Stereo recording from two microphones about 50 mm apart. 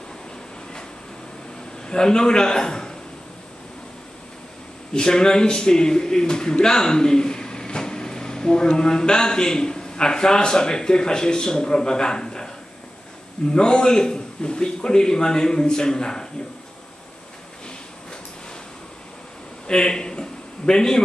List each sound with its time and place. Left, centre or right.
1.9 s a man's voice: centre
4.9 s a man's voice: centre
13.5 s a man's voice: centre
19.7 s a sound: centre